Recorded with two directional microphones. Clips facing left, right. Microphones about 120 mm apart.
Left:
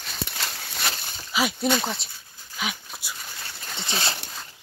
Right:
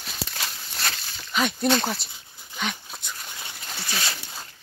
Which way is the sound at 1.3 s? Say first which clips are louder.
Right 1 dB; 5° left (ahead or behind).